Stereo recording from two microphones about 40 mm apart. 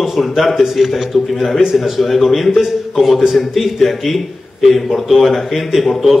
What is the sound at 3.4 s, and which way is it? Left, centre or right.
Speech, centre.